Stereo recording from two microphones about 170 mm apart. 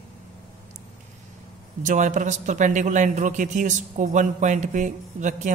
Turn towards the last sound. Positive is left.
turn(degrees=-45)  # may be behind; listen again after turning